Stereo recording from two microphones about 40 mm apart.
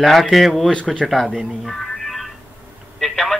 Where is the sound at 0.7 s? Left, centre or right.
Left.